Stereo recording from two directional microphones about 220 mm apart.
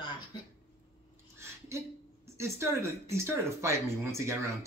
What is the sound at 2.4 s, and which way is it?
Speech, 10° right (ahead or behind).